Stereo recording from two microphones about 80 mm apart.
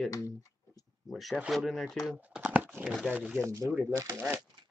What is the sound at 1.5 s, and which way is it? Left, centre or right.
Speech, centre.